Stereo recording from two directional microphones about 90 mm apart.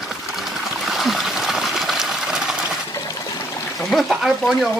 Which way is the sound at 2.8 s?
45° left (ahead or behind).